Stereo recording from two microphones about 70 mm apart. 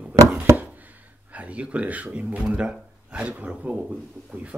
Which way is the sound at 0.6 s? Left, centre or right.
Right.